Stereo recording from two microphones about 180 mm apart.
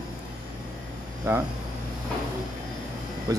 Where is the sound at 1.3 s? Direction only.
15° right (ahead or behind).